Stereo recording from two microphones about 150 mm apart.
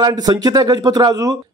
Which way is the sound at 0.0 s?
25° right (ahead or behind).